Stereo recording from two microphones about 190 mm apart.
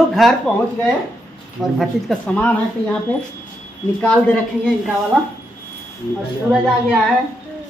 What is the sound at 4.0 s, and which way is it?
Speech, 5° left (ahead or behind).